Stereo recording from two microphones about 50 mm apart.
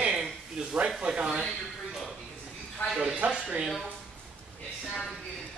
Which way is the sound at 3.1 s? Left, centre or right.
Right.